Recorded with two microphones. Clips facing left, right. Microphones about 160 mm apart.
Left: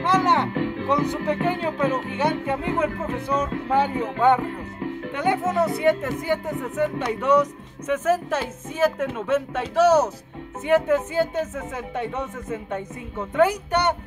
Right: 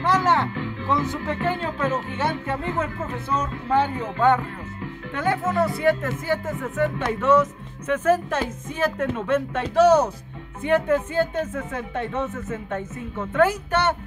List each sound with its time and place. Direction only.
0.0 s music: 20° left (ahead or behind)
0.6 s music: 60° left (ahead or behind)
0.8 s speech: 20° left (ahead or behind)